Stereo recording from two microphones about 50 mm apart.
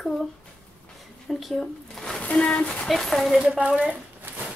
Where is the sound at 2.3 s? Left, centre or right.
Centre.